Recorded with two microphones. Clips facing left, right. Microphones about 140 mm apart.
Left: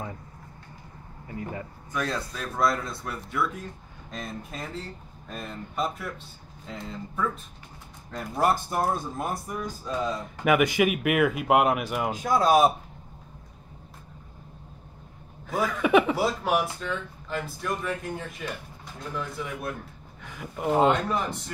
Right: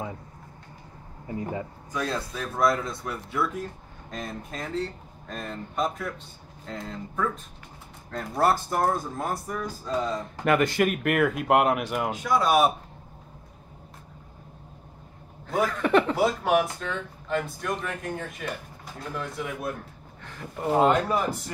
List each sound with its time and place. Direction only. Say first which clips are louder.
1.2 s speech: right 3 dB; 25° right (ahead or behind)
1.5 s speech: right 2 dB; 15° right (ahead or behind); by 8.5 s 10° left (ahead or behind)
8.6 s speech: right 2 dB; 25° left (ahead or behind)
10.4 s speech: left 1 dB; 10° left (ahead or behind)
12.2 s speech: left 2 dB; 40° left (ahead or behind)
15.4 s speech: right 1 dB; centre (ahead or behind)